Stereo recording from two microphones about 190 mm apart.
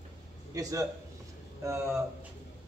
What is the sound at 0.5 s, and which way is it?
Speech, 15° right (ahead or behind).